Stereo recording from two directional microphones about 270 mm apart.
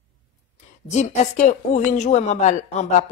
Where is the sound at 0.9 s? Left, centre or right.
Left.